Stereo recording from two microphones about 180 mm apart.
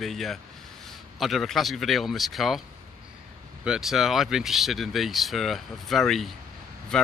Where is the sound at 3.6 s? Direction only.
5° right (ahead or behind).